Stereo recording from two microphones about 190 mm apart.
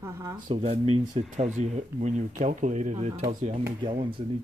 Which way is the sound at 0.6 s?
35° right (ahead or behind).